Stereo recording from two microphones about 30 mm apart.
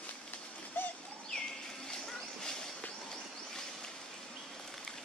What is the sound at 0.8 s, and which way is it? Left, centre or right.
Bird, left.